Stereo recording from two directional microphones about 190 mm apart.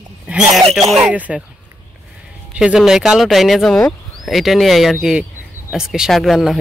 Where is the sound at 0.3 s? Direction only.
5° right (ahead or behind).